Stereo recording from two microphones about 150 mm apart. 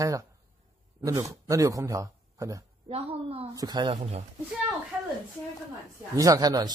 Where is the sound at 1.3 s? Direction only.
20° right (ahead or behind).